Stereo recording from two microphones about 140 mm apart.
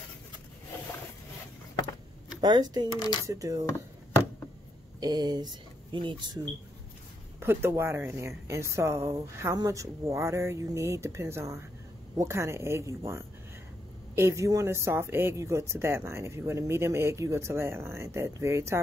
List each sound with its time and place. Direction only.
2.4 s speech: 30° right (ahead or behind)
3.6 s a sound: 15° left (ahead or behind)
5.0 s speech: 30° right (ahead or behind)
7.3 s speech: 15° right (ahead or behind)